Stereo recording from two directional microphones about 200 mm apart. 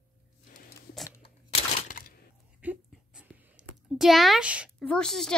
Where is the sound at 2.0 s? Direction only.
45° left (ahead or behind).